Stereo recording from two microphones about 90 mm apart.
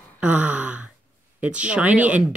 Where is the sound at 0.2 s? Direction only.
15° right (ahead or behind).